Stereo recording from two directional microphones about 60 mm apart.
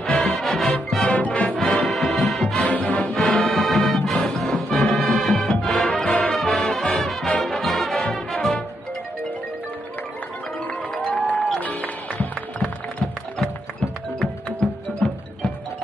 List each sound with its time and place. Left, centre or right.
0.0 s music: centre
1.0 s music: left
1.8 s music: centre
2.6 s music: left
3.2 s music: centre
11.3 s music: centre
11.6 s music: left
14.2 s music: centre